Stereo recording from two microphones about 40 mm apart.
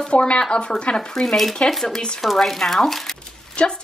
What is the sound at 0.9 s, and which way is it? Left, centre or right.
Speech, centre.